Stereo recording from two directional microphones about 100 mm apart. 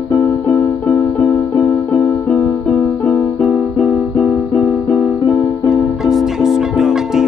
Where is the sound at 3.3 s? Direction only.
5° left (ahead or behind).